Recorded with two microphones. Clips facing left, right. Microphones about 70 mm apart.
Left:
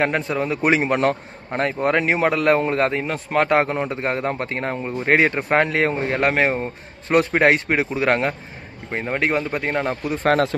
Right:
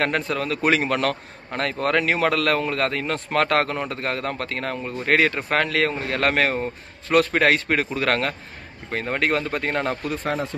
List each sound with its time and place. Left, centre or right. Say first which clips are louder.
0.0 s speech: left 2 dB; centre
3.1 s speech: left 2 dB; centre
10.2 s speech: left 10 dB; left